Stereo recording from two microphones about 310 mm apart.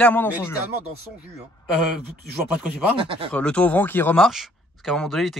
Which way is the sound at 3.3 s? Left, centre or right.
Centre.